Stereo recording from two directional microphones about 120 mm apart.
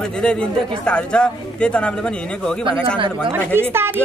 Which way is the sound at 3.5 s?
20° right (ahead or behind).